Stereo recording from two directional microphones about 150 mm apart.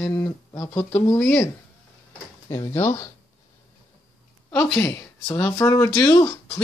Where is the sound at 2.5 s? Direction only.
20° left (ahead or behind).